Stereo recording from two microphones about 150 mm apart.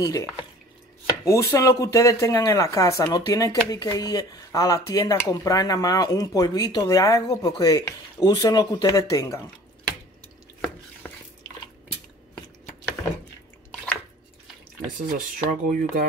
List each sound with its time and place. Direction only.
0.0 s speech: 25° left (ahead or behind)
11.0 s a sound: 10° left (ahead or behind)
15.3 s speech: 70° right (ahead or behind)